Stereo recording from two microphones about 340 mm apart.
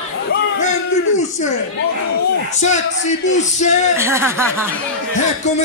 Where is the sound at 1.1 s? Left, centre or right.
Left.